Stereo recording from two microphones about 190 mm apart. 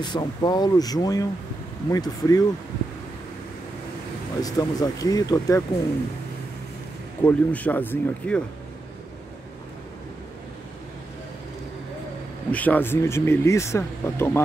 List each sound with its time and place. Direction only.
0.0 s speech: 25° left (ahead or behind)
4.4 s speech: 20° left (ahead or behind)
7.2 s speech: 10° left (ahead or behind)
12.4 s speech: 10° left (ahead or behind)